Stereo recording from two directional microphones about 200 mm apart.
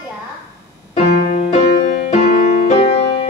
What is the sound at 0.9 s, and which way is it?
Music, 35° left (ahead or behind).